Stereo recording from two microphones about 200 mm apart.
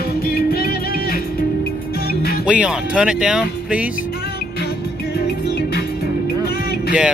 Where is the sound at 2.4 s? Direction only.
5° right (ahead or behind).